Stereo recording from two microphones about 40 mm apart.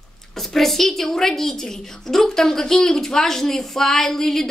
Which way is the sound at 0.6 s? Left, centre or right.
Centre.